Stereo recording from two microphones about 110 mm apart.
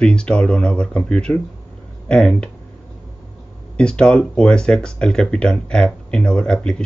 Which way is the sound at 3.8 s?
10° left (ahead or behind).